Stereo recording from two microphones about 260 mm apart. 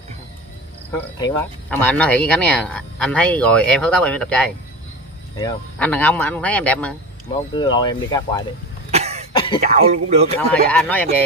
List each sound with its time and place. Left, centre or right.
0.9 s speech: centre
7.5 s speech: centre
8.9 s cough: right
9.3 s throat clearing: centre
9.6 s speech: right
10.5 s speech: centre